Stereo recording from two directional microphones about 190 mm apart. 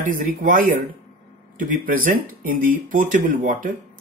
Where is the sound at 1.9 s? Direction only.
45° right (ahead or behind).